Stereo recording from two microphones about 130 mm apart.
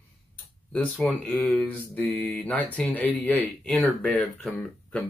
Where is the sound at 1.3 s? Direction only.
10° left (ahead or behind).